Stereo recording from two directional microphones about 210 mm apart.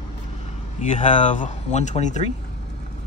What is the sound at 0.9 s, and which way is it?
Speech, 35° left (ahead or behind).